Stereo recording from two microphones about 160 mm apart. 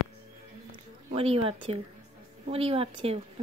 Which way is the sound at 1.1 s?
35° right (ahead or behind).